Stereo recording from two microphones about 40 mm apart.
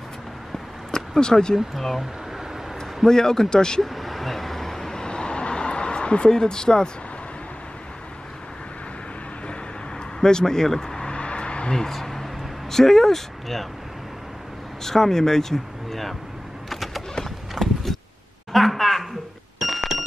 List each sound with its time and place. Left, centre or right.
0.9 s speech: centre
1.7 s speech: centre
3.1 s speech: centre
3.8 s vehicle: centre
5.0 s a sound: left
10.2 s speech: centre
11.1 s a sound: left
11.7 s speech: centre
14.8 s speech: centre
16.6 s a sound: centre